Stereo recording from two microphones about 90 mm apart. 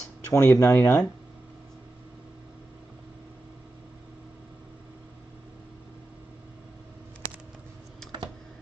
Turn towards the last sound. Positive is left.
turn(degrees=30)  # may be behind; listen again after turning